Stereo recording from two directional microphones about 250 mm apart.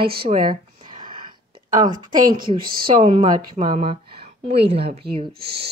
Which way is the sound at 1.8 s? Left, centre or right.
Centre.